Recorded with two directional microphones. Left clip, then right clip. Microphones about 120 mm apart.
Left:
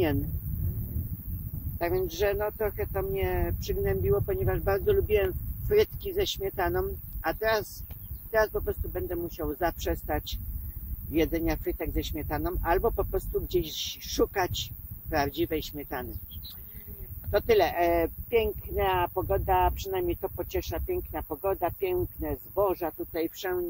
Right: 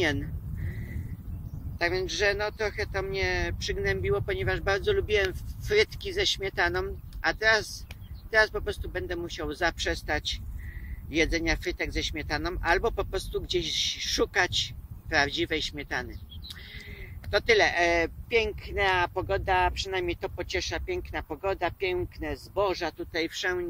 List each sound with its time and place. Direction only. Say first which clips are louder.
1.8 s speech: right 1 dB; 20° right (ahead or behind)
17.3 s speech: right 1 dB; 15° right (ahead or behind)